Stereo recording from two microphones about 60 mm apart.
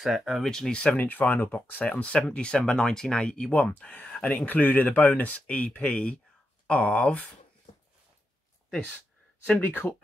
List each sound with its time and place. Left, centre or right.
0.0 s speech: centre
0.9 s speech: left
8.6 s a sound: centre
9.6 s speech: left